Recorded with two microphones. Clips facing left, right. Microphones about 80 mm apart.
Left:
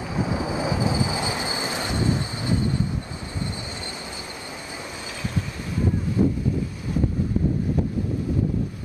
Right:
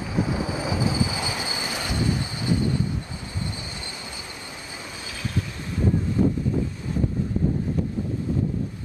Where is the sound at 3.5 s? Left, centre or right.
Left.